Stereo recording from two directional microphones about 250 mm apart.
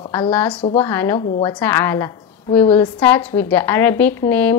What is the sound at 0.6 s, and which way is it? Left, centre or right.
Speech, left.